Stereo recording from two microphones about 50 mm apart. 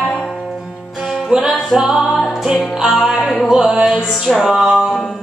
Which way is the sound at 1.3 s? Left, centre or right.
Right.